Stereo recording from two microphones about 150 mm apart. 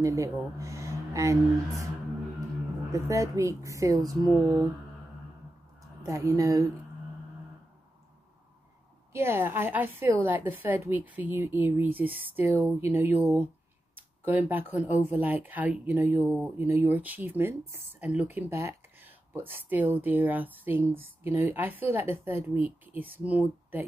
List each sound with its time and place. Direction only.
0.0 s speech: 20° right (ahead or behind)
2.9 s a woman's voice: 20° right (ahead or behind)
5.8 s speech: 20° right (ahead or behind)
9.1 s speech: 15° right (ahead or behind)